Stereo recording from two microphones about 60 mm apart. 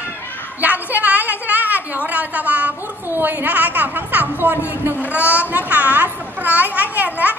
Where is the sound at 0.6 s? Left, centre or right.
Right.